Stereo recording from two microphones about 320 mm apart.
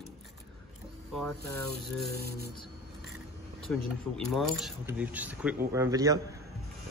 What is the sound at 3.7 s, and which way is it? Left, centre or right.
A man's voice, centre.